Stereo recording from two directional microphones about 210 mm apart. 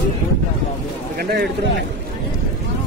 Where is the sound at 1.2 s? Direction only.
50° right (ahead or behind).